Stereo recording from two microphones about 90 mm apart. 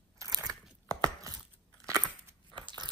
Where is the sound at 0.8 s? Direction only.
45° right (ahead or behind).